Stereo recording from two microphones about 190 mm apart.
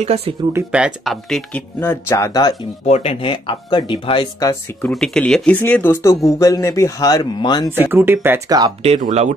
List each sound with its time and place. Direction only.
0.0 s speech: 35° right (ahead or behind)
0.5 s speech: 10° right (ahead or behind); by 2.5 s 15° left (ahead or behind)
2.8 s speech: 35° left (ahead or behind); by 4.9 s 15° left (ahead or behind)
4.9 s speech: 5° left (ahead or behind); by 7.7 s 20° left (ahead or behind)
7.8 s speech: 10° right (ahead or behind)
9.0 s speech: 35° right (ahead or behind)